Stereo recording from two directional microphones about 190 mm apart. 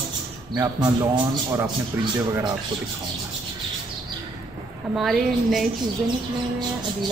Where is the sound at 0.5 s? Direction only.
15° right (ahead or behind).